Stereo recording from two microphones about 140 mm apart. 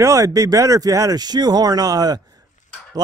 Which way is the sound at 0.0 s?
25° right (ahead or behind).